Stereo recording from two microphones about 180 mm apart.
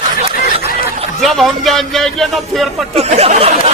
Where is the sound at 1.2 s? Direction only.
Centre (ahead or behind).